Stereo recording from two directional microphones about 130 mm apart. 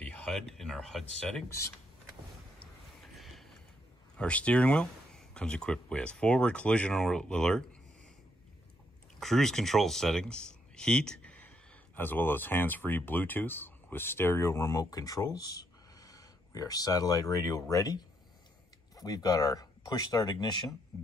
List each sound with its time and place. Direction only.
0.0 s speech: 10° left (ahead or behind)
3.2 s a sound: centre (ahead or behind)
4.2 s speech: 10° left (ahead or behind)
9.2 s speech: 5° left (ahead or behind); by 20.5 s 30° left (ahead or behind)